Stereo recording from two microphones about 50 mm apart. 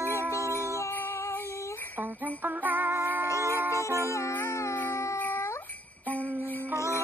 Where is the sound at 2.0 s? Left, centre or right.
Right.